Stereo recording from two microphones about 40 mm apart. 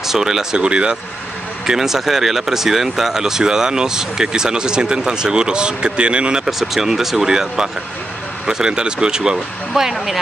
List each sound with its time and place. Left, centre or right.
0.0 s speech: centre
0.6 s speech: right
1.7 s speech: centre; by 6.4 s right
6.4 s speech: centre